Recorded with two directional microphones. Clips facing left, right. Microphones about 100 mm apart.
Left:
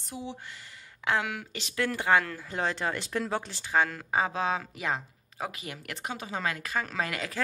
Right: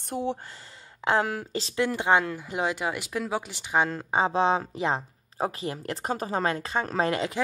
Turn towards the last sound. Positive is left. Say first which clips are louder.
# right 7 dB
turn(degrees=-25)  # may be behind; listen again after turning